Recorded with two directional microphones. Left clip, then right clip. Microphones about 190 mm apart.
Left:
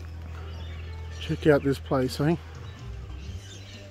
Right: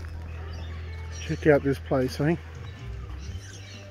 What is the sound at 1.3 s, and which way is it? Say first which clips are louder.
Speech: right 1 dB; 20° left (ahead or behind).